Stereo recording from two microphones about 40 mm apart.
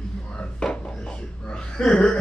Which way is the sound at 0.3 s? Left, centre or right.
Left.